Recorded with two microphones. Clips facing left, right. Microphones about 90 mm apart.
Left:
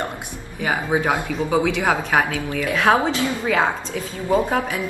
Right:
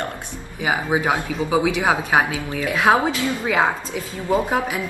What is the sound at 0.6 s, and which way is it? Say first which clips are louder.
Speech: even; 10° right (ahead or behind).